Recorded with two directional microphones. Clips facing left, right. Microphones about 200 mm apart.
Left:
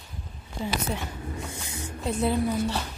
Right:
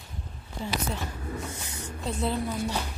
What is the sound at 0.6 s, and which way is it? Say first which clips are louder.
Speech: left 2 dB; 15° left (ahead or behind).